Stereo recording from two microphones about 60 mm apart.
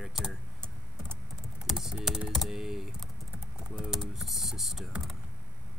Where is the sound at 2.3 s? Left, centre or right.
Centre.